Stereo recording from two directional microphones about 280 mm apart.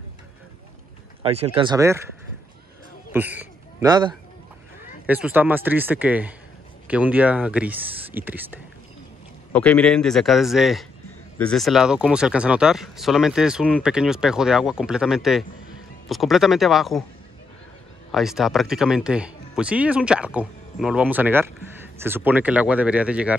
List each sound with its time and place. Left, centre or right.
1.2 s speech: right
3.1 s speech: centre
9.5 s speech: centre
18.1 s speech: centre